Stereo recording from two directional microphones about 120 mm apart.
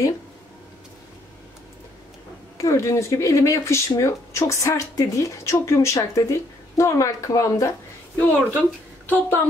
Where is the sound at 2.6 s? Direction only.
25° left (ahead or behind).